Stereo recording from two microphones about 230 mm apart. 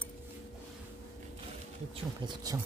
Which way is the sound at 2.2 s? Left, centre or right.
Centre.